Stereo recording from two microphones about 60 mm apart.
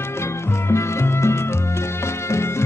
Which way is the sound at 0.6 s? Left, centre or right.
Left.